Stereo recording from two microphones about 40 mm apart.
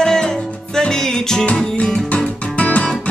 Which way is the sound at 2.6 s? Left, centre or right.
Left.